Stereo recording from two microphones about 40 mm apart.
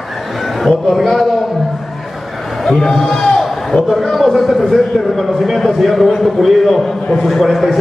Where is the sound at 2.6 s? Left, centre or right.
Centre.